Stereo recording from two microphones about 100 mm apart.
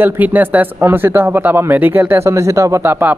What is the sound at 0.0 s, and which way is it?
Speech, 20° right (ahead or behind).